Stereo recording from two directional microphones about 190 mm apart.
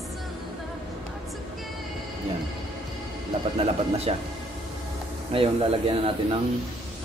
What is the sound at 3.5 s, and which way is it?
Speech, 30° right (ahead or behind).